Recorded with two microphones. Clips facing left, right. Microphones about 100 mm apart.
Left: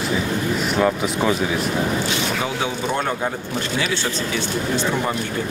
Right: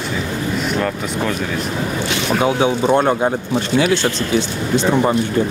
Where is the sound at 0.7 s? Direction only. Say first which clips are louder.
Left 1 dB; 10° left (ahead or behind).